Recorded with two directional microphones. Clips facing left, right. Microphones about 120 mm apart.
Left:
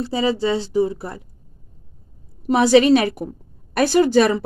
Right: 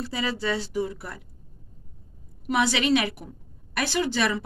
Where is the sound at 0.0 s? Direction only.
30° left (ahead or behind).